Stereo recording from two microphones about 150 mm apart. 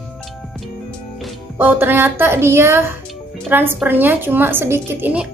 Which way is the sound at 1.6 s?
15° right (ahead or behind).